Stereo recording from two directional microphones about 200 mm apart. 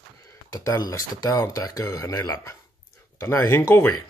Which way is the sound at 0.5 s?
15° left (ahead or behind).